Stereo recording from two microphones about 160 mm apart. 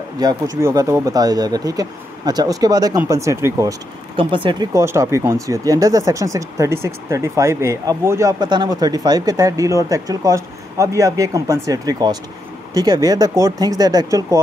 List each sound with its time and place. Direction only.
0.2 s speech: 20° right (ahead or behind)
4.2 s speech: 30° right (ahead or behind)
4.7 s speech: 15° right (ahead or behind)